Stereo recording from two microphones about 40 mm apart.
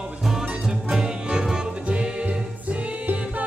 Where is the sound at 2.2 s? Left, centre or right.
Right.